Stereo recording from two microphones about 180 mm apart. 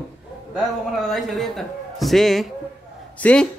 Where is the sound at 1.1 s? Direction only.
Centre (ahead or behind).